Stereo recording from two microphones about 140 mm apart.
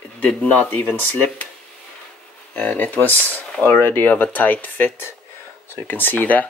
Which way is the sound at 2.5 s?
10° left (ahead or behind).